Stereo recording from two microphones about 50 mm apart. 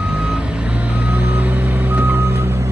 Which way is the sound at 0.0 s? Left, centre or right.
Right.